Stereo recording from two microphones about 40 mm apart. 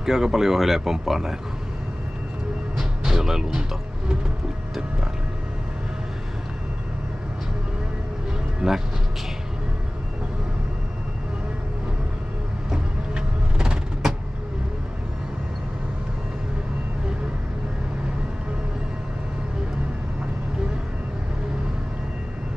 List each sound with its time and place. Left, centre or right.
0.0 s speech: centre
3.0 s speech: centre
8.6 s speech: centre
12.7 s vehicle: centre